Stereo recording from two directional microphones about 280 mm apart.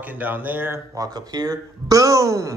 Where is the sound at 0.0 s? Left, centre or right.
Centre.